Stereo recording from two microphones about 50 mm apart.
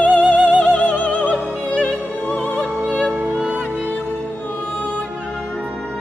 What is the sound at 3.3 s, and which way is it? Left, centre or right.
Music, right.